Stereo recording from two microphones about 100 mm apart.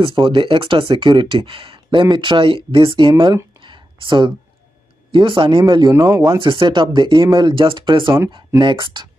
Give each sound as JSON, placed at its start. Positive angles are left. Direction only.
{"t": 0.0, "sound": "speech", "side_deg": -55}
{"t": 3.6, "sound": "a sound", "side_deg": -55}
{"t": 5.1, "sound": "speech", "side_deg": -55}
{"t": 5.7, "sound": "speech", "side_deg": -45}
{"t": 5.9, "sound": "speech", "side_deg": -30}
{"t": 6.4, "sound": "speech", "side_deg": -50}